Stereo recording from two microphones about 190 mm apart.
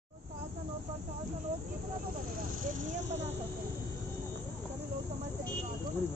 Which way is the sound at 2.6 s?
40° right (ahead or behind).